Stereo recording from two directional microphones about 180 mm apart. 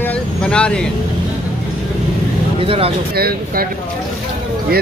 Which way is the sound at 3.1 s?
60° right (ahead or behind).